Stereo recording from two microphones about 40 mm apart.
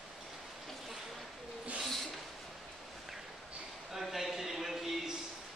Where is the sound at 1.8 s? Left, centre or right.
Centre.